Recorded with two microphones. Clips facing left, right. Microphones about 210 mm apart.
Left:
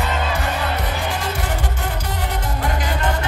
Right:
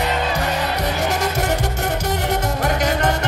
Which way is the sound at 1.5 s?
75° right (ahead or behind).